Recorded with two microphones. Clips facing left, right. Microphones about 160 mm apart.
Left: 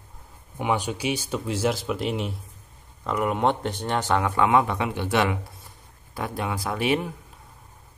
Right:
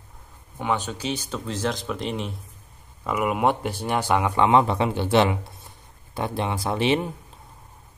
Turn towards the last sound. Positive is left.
turn(degrees=-25)  # may be behind; listen again after turning